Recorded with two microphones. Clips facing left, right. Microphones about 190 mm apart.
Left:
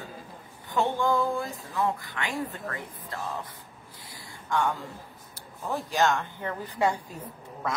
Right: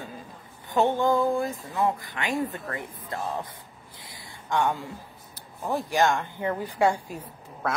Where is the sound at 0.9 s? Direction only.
20° right (ahead or behind).